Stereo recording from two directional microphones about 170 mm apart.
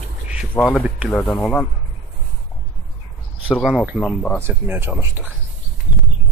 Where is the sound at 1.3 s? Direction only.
5° left (ahead or behind).